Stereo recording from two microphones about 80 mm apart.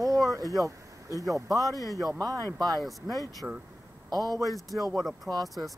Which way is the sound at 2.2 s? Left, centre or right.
Right.